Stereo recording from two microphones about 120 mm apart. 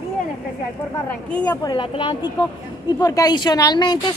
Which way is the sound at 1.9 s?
45° left (ahead or behind).